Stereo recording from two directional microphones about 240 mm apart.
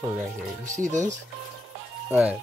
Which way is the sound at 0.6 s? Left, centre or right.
Right.